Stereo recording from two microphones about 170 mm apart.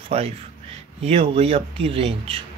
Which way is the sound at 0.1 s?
40° right (ahead or behind).